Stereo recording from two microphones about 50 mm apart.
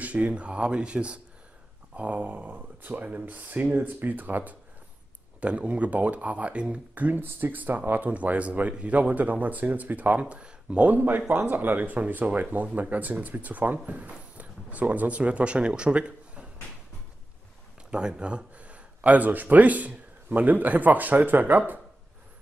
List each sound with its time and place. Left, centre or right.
0.0 s speech: right
5.4 s speech: right
7.1 s speech: right
17.9 s speech: centre; by 21.7 s right